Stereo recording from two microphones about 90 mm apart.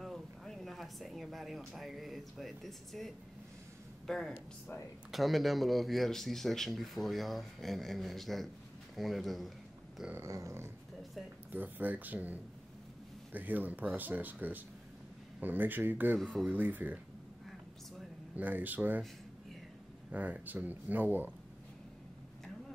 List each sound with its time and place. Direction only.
0.0 s a sound: 5° left (ahead or behind)
1.7 s speech: centre (ahead or behind)
4.3 s speech: 25° left (ahead or behind)
5.1 s speech: centre (ahead or behind)
10.1 s dog: 35° right (ahead or behind)
11.5 s speech: 20° right (ahead or behind)
18.3 s speech: 20° right (ahead or behind)
20.1 s speech: 15° right (ahead or behind)